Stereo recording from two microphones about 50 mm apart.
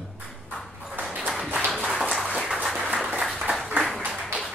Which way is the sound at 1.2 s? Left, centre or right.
Centre.